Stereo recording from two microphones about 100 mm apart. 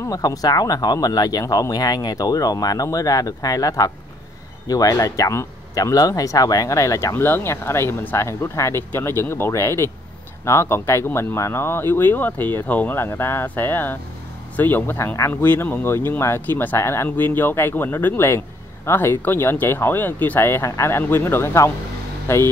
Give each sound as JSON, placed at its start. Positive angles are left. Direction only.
{"t": 0.0, "sound": "speech", "side_deg": 35}